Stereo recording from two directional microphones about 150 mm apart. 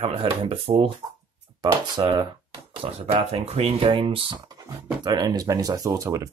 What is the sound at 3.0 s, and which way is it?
Speech, 45° right (ahead or behind).